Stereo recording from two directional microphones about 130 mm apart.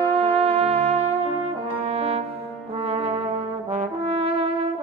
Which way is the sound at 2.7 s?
50° right (ahead or behind).